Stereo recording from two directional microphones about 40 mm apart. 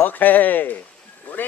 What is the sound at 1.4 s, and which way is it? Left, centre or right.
Vehicle, left.